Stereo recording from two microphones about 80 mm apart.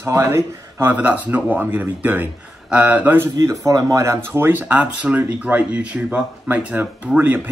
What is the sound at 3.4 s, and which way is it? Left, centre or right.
Speech, right.